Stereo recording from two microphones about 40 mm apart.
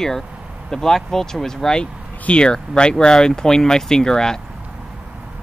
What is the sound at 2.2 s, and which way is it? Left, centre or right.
Speech, left.